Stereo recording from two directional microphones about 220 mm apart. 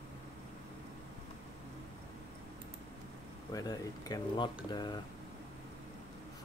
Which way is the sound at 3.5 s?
15° left (ahead or behind).